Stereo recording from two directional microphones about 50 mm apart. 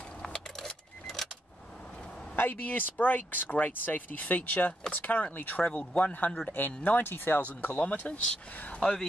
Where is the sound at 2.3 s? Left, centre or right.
Left.